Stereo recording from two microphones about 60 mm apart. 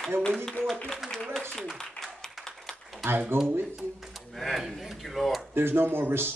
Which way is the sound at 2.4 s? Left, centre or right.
Centre.